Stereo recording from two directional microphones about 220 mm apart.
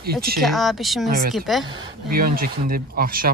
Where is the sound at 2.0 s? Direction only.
40° right (ahead or behind).